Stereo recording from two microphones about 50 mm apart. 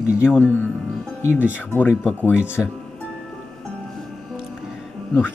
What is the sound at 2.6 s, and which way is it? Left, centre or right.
Speech, centre.